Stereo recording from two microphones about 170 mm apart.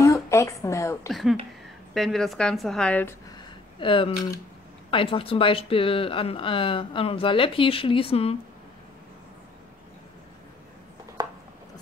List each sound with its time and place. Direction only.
0.0 s a sound: 15° left (ahead or behind)
2.0 s a woman's voice: centre (ahead or behind)
3.8 s speech: 30° left (ahead or behind)